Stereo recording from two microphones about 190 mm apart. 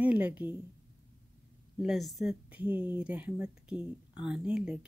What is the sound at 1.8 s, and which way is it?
Speech, centre (ahead or behind).